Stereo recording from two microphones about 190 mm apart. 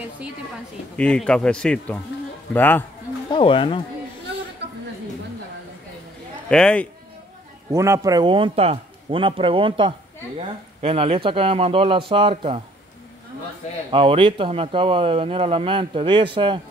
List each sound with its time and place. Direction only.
0.9 s speech: 5° left (ahead or behind)
3.3 s speech: 25° left (ahead or behind)
4.6 s a sound: 65° right (ahead or behind)
6.5 s speech: 5° left (ahead or behind)
7.7 s speech: 15° right (ahead or behind)
13.8 s speech: 25° right (ahead or behind)